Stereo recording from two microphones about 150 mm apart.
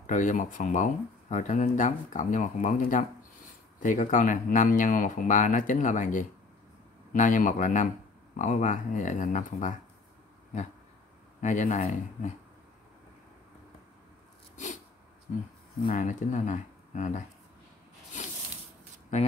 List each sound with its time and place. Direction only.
0.0 s speech: 55° left (ahead or behind)
11.4 s speech: 55° left (ahead or behind)
15.9 s speech: 55° left (ahead or behind)